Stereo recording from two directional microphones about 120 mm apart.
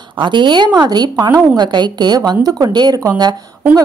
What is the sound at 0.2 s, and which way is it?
A woman's voice, 40° right (ahead or behind).